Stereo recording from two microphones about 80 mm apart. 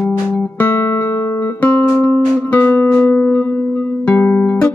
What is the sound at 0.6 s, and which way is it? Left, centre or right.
Music, left.